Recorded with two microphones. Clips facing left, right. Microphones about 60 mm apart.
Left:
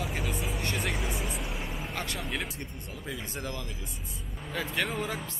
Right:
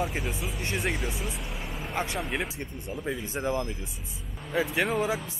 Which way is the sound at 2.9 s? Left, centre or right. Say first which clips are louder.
Right 7 dB; right.